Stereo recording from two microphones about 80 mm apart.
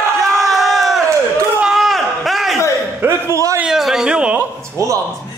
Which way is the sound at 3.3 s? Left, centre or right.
Right.